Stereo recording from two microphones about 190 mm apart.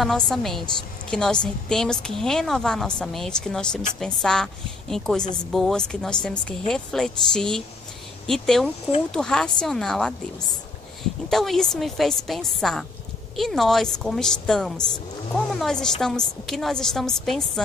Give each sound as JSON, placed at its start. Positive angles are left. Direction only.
{"t": 0.0, "sound": "speech", "side_deg": 0}
{"t": 11.2, "sound": "speech", "side_deg": 0}